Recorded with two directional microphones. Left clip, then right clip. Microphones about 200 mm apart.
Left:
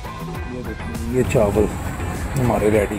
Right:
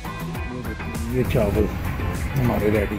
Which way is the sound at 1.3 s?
15° left (ahead or behind).